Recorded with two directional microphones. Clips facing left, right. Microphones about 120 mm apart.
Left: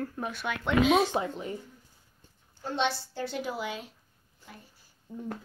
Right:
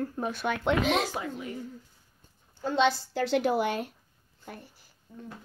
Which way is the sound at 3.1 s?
80° right.